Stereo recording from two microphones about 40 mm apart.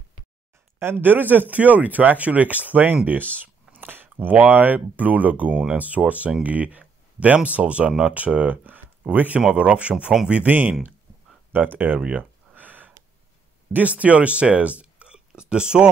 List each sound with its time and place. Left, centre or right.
0.7 s speech: right
3.3 s speech: right
9.5 s speech: right
10.3 s speech: right
11.7 s speech: right
12.2 s a sound: right
13.7 s speech: right
15.0 s a sound: right